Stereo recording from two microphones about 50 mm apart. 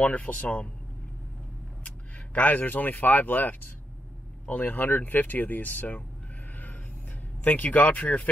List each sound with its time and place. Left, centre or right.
0.0 s a man's voice: left
1.9 s speech: left
6.5 s a sound: left
7.4 s speech: left